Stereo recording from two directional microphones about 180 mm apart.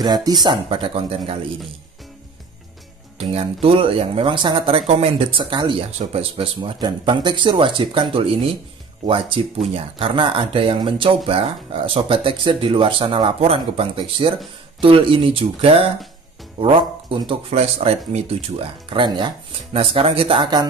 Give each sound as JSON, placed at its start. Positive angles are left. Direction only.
{"t": 0.0, "sound": "speech", "side_deg": -20}
{"t": 3.2, "sound": "speech", "side_deg": -35}